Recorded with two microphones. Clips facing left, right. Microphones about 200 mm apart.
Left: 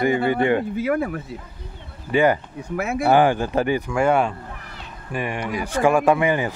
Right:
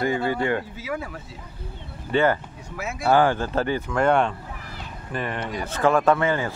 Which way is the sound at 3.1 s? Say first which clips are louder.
Left 2 dB; 15° left (ahead or behind).